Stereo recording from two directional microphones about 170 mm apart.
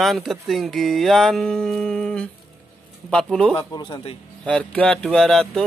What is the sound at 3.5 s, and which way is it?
Speech, 25° left (ahead or behind).